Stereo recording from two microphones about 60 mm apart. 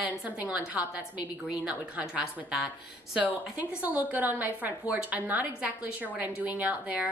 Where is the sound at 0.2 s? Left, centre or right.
Right.